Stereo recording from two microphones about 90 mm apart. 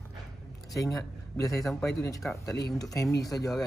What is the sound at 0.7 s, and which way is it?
Speech, 40° left (ahead or behind).